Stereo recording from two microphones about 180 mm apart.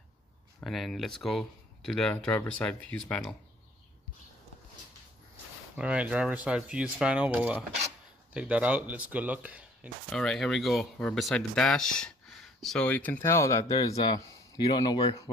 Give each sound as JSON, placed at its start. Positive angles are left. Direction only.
{"t": 0.6, "sound": "speech", "side_deg": 0}
{"t": 5.8, "sound": "speech", "side_deg": -5}
{"t": 10.0, "sound": "speech", "side_deg": 5}